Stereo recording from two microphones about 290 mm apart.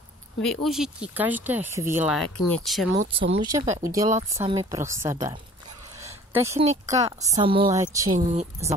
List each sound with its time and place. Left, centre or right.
0.4 s speech: centre
3.0 s a woman's voice: centre
5.9 s a sound: centre
6.9 s a woman's voice: centre
8.3 s speech: right